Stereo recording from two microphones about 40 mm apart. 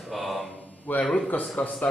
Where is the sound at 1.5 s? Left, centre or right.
Left.